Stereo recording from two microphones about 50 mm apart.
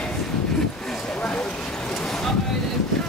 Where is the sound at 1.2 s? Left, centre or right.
Left.